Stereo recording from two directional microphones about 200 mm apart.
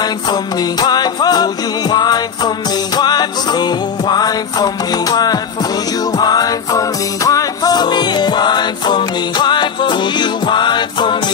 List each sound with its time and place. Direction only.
0.0 s music: 20° left (ahead or behind)